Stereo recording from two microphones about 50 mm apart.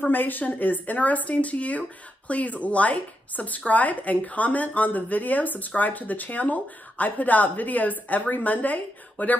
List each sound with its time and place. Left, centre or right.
0.0 s speech: left